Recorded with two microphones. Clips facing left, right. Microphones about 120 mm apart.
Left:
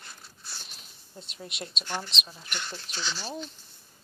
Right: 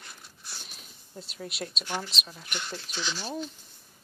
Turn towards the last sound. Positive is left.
turn(degrees=-10)  # may be behind; listen again after turning